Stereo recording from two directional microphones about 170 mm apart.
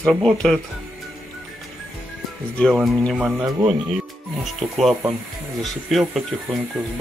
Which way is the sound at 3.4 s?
25° right (ahead or behind).